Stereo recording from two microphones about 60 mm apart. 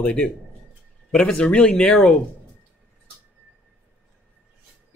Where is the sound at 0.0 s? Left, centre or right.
Left.